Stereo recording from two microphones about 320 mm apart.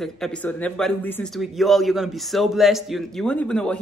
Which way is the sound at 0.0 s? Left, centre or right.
Centre.